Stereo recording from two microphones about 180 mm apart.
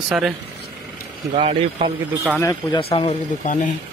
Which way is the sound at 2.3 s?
20° left (ahead or behind).